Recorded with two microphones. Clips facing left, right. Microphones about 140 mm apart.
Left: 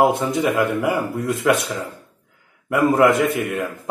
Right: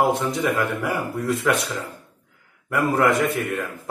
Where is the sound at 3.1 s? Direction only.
55° left (ahead or behind).